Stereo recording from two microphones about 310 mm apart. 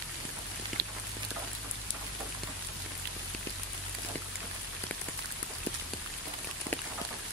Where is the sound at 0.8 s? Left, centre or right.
Right.